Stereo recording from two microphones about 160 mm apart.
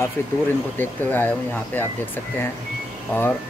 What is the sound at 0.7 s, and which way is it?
Speech, 10° left (ahead or behind).